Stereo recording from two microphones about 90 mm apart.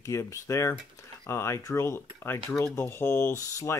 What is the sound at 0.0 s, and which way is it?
Speech, 35° left (ahead or behind).